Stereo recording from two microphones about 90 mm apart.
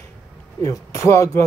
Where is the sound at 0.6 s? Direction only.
35° left (ahead or behind).